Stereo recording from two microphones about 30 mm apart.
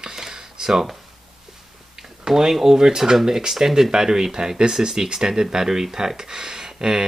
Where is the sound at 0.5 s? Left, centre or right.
Centre.